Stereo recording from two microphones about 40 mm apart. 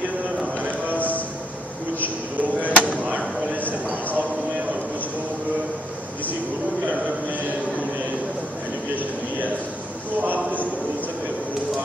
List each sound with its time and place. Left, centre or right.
0.9 s music: left
2.6 s chop: right
10.2 s a sound: right